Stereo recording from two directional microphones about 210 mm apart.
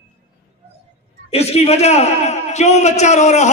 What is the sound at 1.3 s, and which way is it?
A man's voice, 30° left (ahead or behind).